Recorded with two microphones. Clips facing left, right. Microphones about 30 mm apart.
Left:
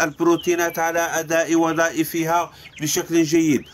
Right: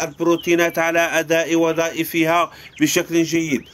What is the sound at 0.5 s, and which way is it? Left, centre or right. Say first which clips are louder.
Speech: right 4 dB; right.